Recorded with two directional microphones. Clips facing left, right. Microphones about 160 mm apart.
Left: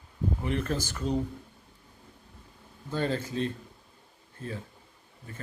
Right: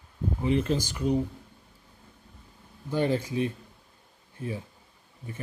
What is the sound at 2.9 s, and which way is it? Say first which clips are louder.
Speech: right 4 dB; 15° right (ahead or behind).